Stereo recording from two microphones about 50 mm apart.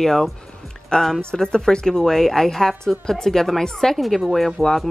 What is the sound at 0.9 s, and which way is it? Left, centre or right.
A woman's voice, centre.